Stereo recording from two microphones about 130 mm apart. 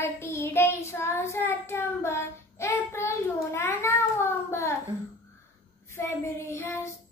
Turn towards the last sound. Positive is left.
turn(degrees=20)  # may be behind; listen again after turning